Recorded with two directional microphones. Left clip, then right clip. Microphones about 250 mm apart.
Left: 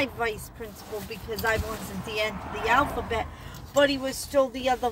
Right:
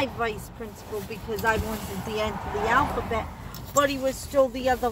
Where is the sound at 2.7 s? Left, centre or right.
Centre.